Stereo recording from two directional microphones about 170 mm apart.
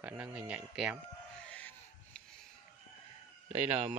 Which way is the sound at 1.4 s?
5° left (ahead or behind).